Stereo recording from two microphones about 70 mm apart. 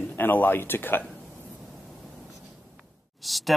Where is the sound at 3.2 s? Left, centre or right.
Centre.